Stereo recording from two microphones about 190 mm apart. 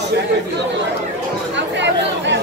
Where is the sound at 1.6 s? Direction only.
70° right (ahead or behind).